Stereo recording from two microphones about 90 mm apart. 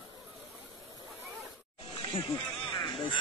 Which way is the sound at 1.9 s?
65° left (ahead or behind).